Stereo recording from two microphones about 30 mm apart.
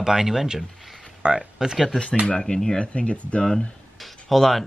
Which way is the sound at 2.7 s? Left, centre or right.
Left.